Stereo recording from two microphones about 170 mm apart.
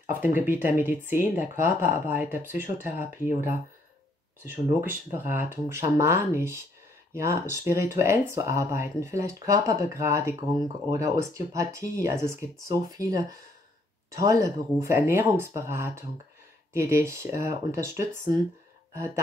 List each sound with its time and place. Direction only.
0.1 s speech: 10° right (ahead or behind)